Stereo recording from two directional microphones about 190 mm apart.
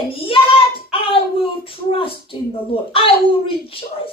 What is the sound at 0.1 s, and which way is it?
Hands, 25° left (ahead or behind).